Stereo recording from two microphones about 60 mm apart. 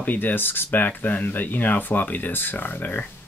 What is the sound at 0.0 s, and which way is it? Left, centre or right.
Speech, left.